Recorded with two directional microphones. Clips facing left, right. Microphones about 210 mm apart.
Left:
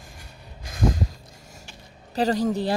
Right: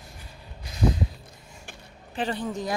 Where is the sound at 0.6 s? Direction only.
45° left (ahead or behind).